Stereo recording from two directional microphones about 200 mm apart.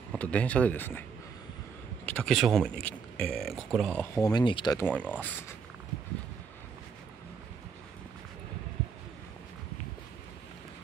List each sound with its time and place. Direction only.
0.1 s speech: 5° left (ahead or behind)
2.0 s speech: 5° left (ahead or behind)
4.0 s speech: 15° left (ahead or behind)
4.7 s speech: 5° left (ahead or behind)